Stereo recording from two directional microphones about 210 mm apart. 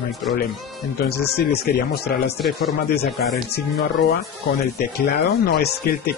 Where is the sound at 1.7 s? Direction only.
45° left (ahead or behind).